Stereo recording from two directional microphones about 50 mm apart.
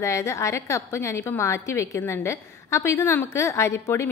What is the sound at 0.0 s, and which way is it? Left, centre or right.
A woman's voice, left.